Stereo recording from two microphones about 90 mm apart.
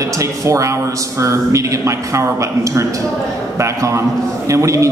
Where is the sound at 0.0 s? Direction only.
35° right (ahead or behind).